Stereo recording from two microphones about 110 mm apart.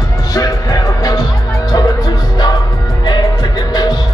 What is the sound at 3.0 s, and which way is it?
Music, 40° left (ahead or behind).